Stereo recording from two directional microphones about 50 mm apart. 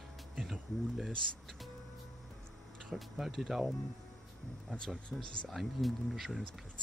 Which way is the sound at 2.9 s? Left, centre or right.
Centre.